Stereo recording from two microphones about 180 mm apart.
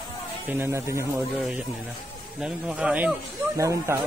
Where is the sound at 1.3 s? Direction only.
Centre (ahead or behind).